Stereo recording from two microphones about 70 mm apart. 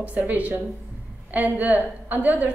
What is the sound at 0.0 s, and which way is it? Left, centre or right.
A woman's voice, right.